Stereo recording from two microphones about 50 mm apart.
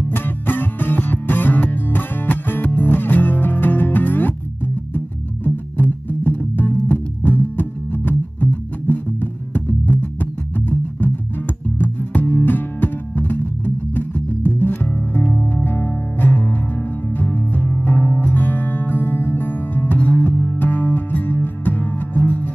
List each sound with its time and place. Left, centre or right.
0.1 s music: left
11.8 s music: left